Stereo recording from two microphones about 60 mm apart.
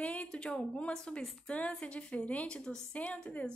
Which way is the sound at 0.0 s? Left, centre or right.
Left.